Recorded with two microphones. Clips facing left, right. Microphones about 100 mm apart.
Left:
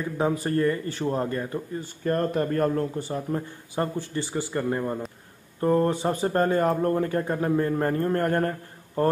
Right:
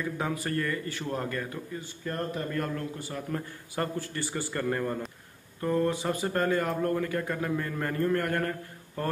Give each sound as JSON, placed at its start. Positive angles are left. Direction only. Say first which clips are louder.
{"t": 0.0, "sound": "speech", "louder": "left 6 dB", "side_deg": 30}
{"t": 2.0, "sound": "speech", "louder": "left 9 dB", "side_deg": 45}
{"t": 5.6, "sound": "speech", "louder": "left 5 dB", "side_deg": 35}